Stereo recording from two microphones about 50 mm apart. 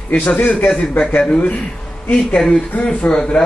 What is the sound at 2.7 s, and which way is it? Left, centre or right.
Speech, left.